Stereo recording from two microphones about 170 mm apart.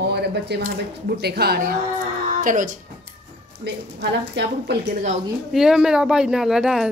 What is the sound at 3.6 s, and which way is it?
A woman's voice, 85° right.